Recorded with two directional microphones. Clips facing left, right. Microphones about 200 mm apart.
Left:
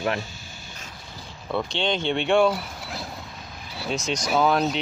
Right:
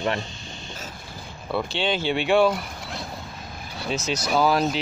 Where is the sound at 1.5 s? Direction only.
5° right (ahead or behind).